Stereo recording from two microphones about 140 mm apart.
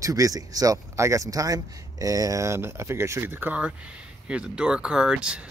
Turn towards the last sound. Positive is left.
turn(degrees=-5)  # may be behind; listen again after turning